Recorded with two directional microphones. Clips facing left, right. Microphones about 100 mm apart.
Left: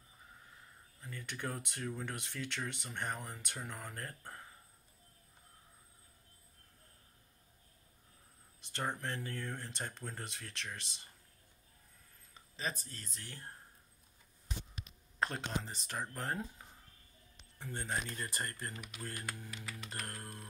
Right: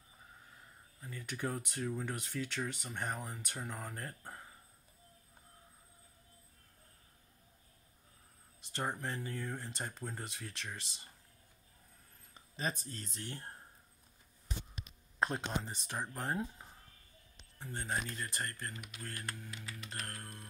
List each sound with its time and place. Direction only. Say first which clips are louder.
1.0 s speech: right 2 dB; 5° right (ahead or behind)
8.7 s speech: even; 5° right (ahead or behind)
12.5 s speech: right 2 dB; 35° right (ahead or behind)
15.1 s speech: right 2 dB; 5° right (ahead or behind)
18.1 s speech: even; 5° left (ahead or behind)